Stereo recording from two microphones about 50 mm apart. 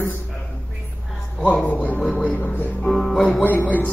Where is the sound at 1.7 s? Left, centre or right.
Left.